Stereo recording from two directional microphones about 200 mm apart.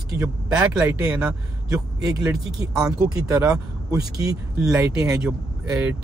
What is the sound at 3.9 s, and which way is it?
Speech, 20° right (ahead or behind).